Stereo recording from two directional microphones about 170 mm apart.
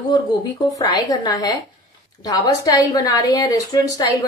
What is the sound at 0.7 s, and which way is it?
A woman's voice, 20° left (ahead or behind).